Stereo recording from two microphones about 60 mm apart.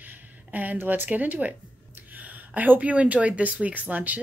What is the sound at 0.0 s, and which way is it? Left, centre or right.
A woman's voice, right.